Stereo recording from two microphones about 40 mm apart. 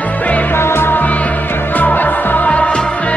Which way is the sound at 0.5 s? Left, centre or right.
Left.